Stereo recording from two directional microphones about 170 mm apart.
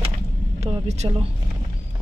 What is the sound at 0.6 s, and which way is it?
Speech, 40° right (ahead or behind).